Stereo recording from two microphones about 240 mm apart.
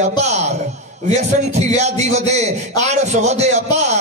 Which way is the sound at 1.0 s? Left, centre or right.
Right.